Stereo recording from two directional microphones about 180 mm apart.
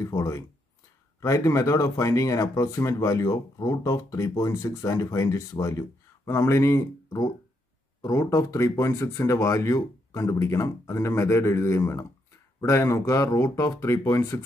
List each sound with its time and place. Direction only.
0.0 s speech: 15° left (ahead or behind)